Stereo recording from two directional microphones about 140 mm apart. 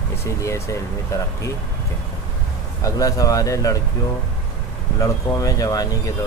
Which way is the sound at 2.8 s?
25° left (ahead or behind).